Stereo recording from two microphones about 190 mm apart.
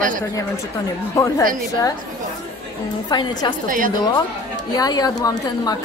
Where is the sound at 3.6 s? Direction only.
45° right (ahead or behind).